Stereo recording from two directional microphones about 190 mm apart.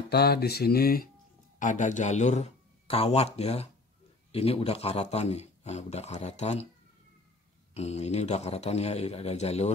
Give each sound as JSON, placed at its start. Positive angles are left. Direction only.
{"t": 0.1, "sound": "speech", "side_deg": 55}
{"t": 1.6, "sound": "a man's voice", "side_deg": 40}
{"t": 7.7, "sound": "a man's voice", "side_deg": 35}